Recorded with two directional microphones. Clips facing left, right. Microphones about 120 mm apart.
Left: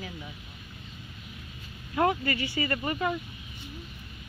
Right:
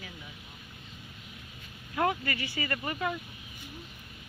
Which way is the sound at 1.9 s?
15° left (ahead or behind).